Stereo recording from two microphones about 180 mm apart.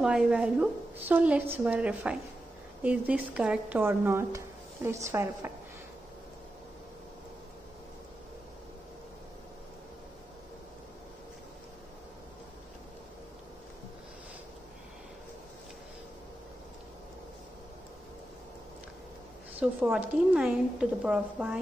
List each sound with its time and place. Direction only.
0.0 s a woman's voice: 5° right (ahead or behind)
19.6 s a woman's voice: 5° right (ahead or behind)